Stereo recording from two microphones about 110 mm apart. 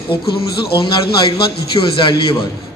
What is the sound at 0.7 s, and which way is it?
A man's voice, 55° left (ahead or behind).